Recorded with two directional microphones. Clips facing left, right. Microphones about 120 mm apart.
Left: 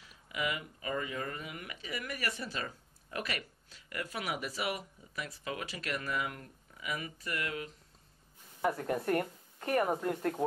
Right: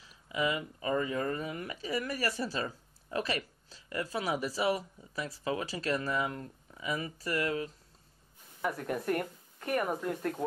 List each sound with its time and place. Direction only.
0.3 s speech: 30° right (ahead or behind)
8.5 s speech: 30° left (ahead or behind)